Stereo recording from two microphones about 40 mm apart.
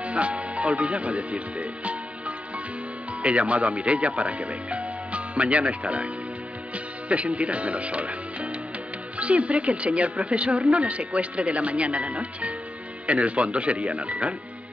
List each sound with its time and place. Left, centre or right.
0.0 s speech: right